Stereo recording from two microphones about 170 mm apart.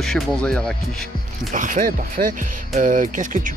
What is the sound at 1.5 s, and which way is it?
Speech, 50° right (ahead or behind).